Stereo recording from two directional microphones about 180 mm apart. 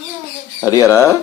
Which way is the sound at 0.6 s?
15° left (ahead or behind).